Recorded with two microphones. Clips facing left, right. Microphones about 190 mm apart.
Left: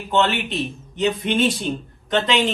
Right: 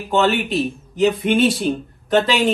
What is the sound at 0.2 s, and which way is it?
Speech, 35° right (ahead or behind).